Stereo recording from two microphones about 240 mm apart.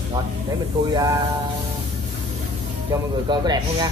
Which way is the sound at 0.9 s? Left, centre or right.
Centre.